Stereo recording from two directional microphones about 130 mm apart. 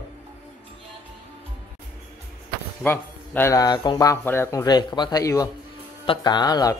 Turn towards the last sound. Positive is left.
turn(degrees=30)  # may be behind; listen again after turning